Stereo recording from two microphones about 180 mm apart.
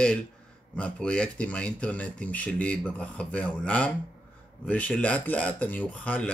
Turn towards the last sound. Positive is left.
turn(degrees=5)  # may be behind; listen again after turning